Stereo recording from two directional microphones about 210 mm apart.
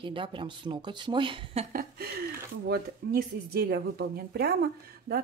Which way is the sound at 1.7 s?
45° right (ahead or behind).